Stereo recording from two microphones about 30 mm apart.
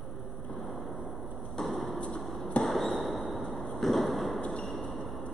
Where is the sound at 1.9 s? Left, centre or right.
Left.